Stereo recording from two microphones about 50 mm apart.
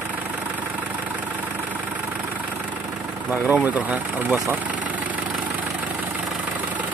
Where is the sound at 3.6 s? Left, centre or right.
Right.